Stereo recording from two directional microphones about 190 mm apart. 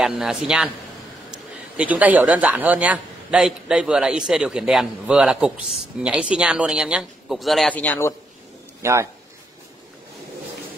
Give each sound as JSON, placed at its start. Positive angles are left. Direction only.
{"t": 0.0, "sound": "a man's voice", "side_deg": -5}
{"t": 8.8, "sound": "speech", "side_deg": -15}